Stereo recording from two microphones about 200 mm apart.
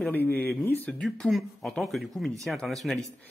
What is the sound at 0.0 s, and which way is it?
A man's voice, 10° left (ahead or behind).